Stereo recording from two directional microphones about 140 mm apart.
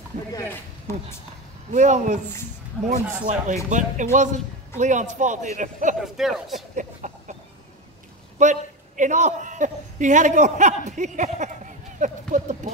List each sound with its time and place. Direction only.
1.7 s a man's voice: 60° right (ahead or behind)
5.9 s speech: centre (ahead or behind)
6.7 s a sound: 60° right (ahead or behind)
8.4 s a man's voice: 60° right (ahead or behind)